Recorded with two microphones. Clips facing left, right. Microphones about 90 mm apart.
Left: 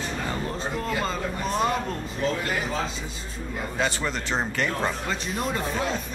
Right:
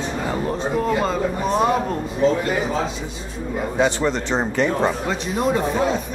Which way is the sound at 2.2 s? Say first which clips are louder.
Right 9 dB; 25° right (ahead or behind).